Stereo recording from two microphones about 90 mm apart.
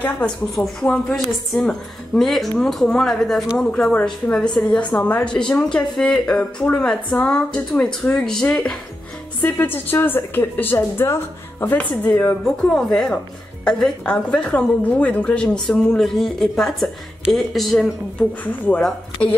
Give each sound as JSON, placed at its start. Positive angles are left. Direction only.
{"t": 0.0, "sound": "a woman's voice", "side_deg": 10}
{"t": 9.4, "sound": "speech", "side_deg": 20}
{"t": 12.4, "sound": "a woman's voice", "side_deg": 5}
{"t": 18.4, "sound": "a woman's voice", "side_deg": 15}